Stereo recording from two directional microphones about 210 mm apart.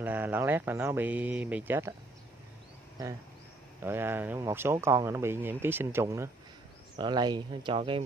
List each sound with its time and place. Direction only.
0.0 s speech: 10° right (ahead or behind)
3.8 s speech: 10° right (ahead or behind)